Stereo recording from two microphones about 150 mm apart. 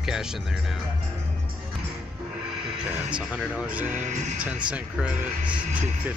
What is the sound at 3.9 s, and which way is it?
Speech, 55° right (ahead or behind).